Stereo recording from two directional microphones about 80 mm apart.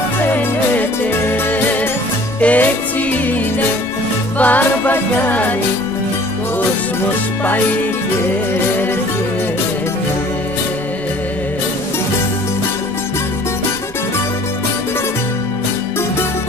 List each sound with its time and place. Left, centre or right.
0.3 s music: left
4.4 s music: left